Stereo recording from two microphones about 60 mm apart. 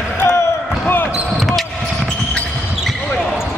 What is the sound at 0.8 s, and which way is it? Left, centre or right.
Basketball bounce, left.